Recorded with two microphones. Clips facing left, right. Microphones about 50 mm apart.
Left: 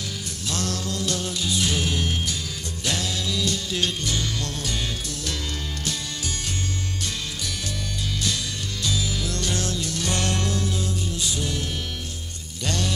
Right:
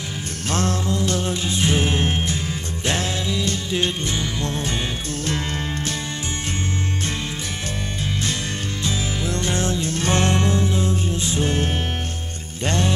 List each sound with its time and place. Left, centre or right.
0.5 s music: right
8.8 s music: right